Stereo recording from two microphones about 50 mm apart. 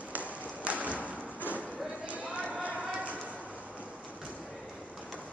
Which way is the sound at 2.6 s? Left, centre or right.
Right.